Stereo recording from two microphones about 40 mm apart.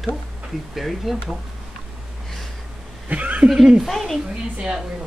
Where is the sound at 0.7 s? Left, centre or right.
Centre.